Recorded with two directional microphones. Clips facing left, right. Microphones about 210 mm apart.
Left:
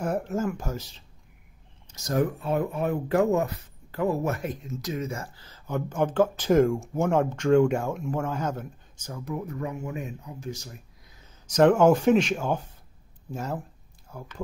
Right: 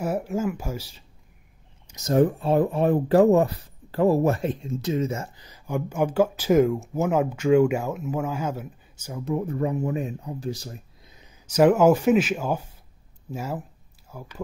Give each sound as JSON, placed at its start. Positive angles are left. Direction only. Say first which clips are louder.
{"t": 0.0, "sound": "speech", "louder": "right 2 dB", "side_deg": -5}
{"t": 1.9, "sound": "speech", "louder": "right 6 dB", "side_deg": -20}
{"t": 9.2, "sound": "speech", "louder": "right 7 dB", "side_deg": -30}
{"t": 11.4, "sound": "speech", "louder": "right 1 dB", "side_deg": -5}